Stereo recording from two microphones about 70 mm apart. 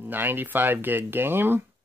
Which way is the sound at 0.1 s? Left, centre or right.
Right.